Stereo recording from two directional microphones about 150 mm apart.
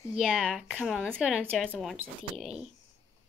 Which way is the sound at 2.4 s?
5° right (ahead or behind).